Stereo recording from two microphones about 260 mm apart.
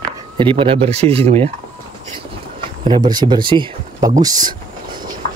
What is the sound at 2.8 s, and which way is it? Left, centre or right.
Speech, centre.